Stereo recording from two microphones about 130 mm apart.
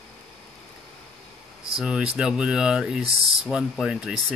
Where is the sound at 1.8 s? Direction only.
5° right (ahead or behind).